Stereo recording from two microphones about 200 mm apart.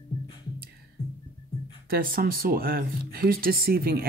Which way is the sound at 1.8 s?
45° right (ahead or behind).